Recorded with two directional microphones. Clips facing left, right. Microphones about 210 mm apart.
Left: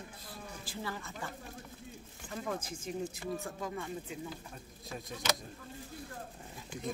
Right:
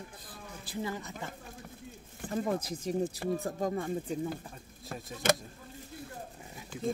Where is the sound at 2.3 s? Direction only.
35° right (ahead or behind).